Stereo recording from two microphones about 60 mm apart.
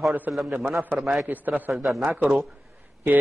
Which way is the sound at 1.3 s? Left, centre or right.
Right.